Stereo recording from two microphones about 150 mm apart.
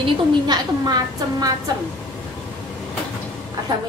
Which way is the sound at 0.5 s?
25° right (ahead or behind).